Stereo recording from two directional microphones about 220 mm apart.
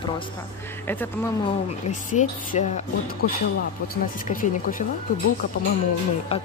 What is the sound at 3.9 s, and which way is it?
Speech, 40° left (ahead or behind).